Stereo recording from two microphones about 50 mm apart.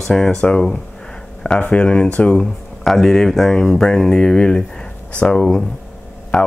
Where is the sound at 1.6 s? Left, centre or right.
Left.